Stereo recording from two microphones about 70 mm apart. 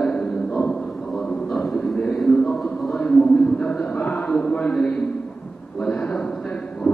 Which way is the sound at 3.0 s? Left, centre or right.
Centre.